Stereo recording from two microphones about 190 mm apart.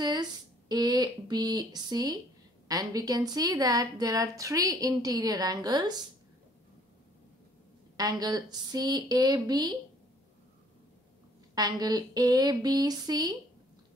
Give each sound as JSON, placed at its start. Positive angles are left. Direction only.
{"t": 0.0, "sound": "a woman's voice", "side_deg": -20}
{"t": 8.0, "sound": "a woman's voice", "side_deg": -20}
{"t": 11.5, "sound": "a woman's voice", "side_deg": -20}